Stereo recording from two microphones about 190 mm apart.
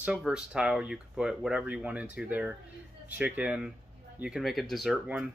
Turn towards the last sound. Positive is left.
turn(degrees=-5)  # may be behind; listen again after turning